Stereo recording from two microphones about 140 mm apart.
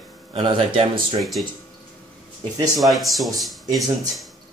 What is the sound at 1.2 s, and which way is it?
Speech, centre (ahead or behind).